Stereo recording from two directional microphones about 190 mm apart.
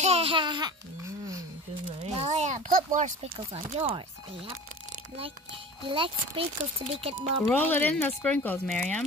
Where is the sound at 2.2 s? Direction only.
40° right (ahead or behind).